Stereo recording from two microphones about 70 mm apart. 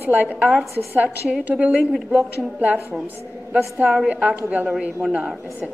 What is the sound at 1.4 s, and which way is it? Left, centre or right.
A woman's voice, right.